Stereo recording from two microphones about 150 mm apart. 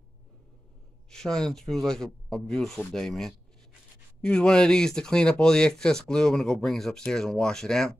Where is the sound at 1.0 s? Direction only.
5° left (ahead or behind).